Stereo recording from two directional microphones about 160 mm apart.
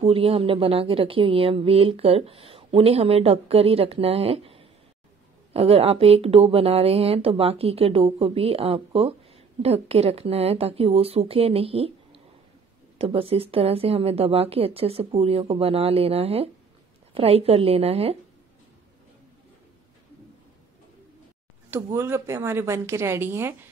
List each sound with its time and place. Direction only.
0.0 s speech: 35° right (ahead or behind)
21.9 s speech: 15° right (ahead or behind)